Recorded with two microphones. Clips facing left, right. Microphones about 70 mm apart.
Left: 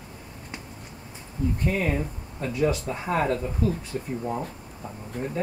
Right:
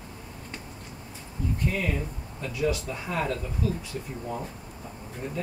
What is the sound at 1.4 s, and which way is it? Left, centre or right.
Speech, left.